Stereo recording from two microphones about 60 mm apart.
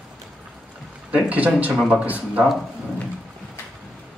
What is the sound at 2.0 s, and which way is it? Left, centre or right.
Speech, right.